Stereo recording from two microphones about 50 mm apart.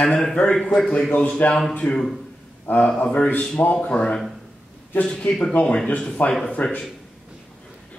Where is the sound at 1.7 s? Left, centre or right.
Left.